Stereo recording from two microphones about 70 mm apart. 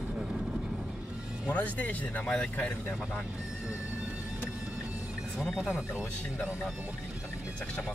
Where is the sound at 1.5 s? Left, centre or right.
Left.